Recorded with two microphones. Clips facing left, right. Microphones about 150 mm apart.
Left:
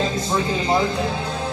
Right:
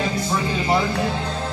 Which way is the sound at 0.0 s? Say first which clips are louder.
Left 1 dB; 20° left (ahead or behind).